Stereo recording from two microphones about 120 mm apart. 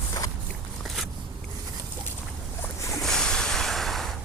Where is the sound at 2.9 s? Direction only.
5° left (ahead or behind).